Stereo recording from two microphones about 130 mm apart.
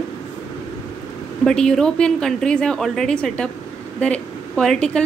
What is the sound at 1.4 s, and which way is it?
A woman's voice, 5° left (ahead or behind).